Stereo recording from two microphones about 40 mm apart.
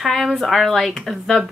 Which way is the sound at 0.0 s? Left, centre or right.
Centre.